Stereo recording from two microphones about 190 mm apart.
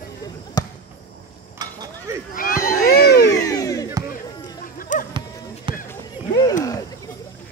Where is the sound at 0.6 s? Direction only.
20° left (ahead or behind).